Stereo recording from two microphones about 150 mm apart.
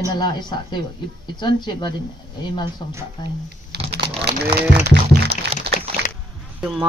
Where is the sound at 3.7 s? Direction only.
90° right.